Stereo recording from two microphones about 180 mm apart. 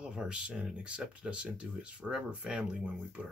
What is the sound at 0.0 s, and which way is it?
Speech, 5° right (ahead or behind).